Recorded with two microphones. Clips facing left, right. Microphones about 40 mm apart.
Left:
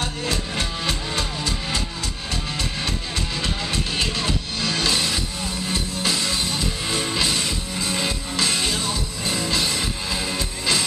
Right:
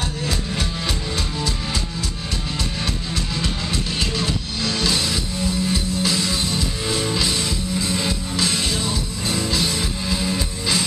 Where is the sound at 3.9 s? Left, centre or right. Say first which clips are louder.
Even; centre.